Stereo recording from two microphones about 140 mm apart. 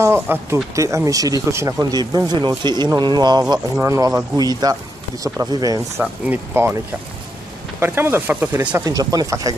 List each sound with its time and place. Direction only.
0.0 s speech: 15° right (ahead or behind)
6.2 s speech: 15° right (ahead or behind)
7.8 s speech: 15° right (ahead or behind)